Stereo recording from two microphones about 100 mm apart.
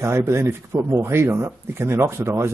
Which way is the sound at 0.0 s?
25° right (ahead or behind).